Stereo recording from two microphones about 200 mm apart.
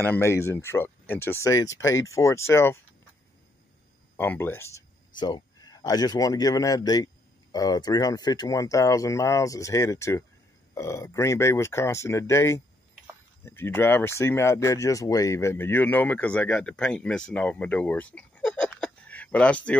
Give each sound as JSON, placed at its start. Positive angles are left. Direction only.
{"t": 0.0, "sound": "speech", "side_deg": 10}
{"t": 4.2, "sound": "speech", "side_deg": 10}